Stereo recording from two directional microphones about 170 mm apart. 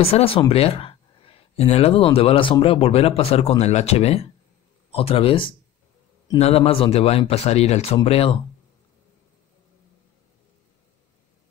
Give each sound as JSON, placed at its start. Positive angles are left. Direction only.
{"t": 0.0, "sound": "speech", "side_deg": 35}